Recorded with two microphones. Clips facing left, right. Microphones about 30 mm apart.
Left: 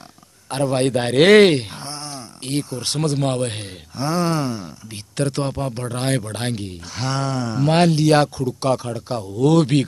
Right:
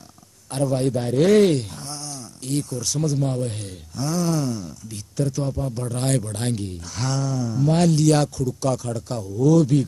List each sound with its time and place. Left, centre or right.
0.5 s speech: left
0.7 s speech: left
1.5 s a sound: left
3.0 s speech: left
3.9 s speech: left
5.1 s speech: left
5.8 s speech: left
7.2 s speech: left
7.8 s speech: left
9.3 s speech: left